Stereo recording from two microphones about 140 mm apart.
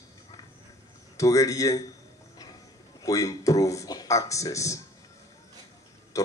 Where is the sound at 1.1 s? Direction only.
20° left (ahead or behind).